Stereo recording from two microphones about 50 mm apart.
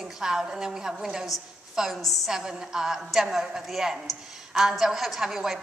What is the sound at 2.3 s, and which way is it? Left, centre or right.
A woman's voice, centre.